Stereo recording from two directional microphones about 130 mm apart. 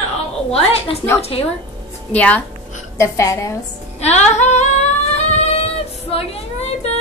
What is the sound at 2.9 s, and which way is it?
Speech, 25° left (ahead or behind).